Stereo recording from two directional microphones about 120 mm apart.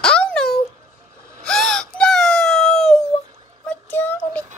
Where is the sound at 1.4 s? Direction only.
5° left (ahead or behind).